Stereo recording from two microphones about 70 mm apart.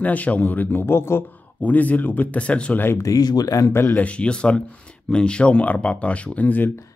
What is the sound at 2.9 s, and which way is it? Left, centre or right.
Speech, left.